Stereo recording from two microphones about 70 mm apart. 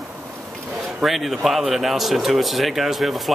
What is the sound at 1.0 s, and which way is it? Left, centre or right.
Speech, centre.